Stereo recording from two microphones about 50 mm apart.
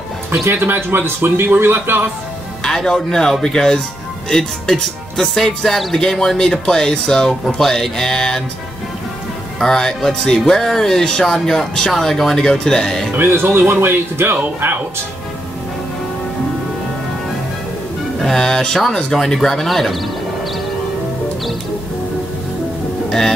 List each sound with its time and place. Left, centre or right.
0.5 s speech: right
2.6 s speech: centre
9.6 s speech: centre
13.2 s speech: right
14.3 s speech: right
18.2 s speech: centre
23.0 s music: centre